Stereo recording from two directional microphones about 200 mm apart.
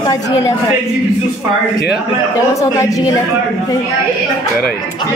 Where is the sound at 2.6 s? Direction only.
15° left (ahead or behind).